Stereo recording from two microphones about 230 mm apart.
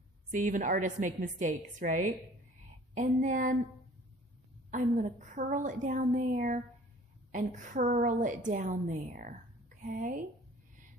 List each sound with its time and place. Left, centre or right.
0.3 s a woman's voice: right
4.6 s a woman's voice: right